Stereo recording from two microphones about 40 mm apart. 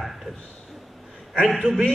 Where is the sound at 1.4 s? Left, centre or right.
Centre.